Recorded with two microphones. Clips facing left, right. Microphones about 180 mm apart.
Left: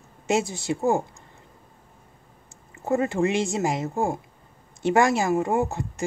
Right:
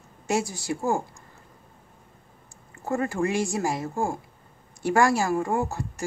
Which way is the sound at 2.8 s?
20° left (ahead or behind).